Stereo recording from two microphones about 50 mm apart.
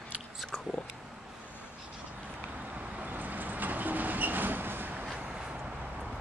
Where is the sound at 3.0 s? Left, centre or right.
Right.